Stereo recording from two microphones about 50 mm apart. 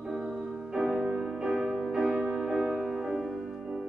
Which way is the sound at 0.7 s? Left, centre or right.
Centre.